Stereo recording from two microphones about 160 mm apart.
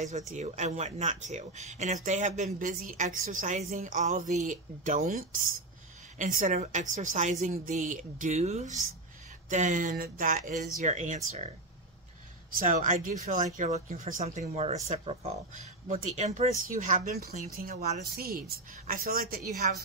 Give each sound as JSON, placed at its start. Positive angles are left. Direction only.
{"t": 0.3, "sound": "speech", "side_deg": -45}
{"t": 10.8, "sound": "speech", "side_deg": -50}
{"t": 12.5, "sound": "speech", "side_deg": -55}
{"t": 18.1, "sound": "a woman's voice", "side_deg": -70}